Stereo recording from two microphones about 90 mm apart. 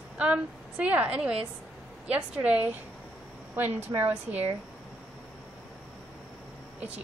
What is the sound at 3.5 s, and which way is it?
Speech, 25° right (ahead or behind).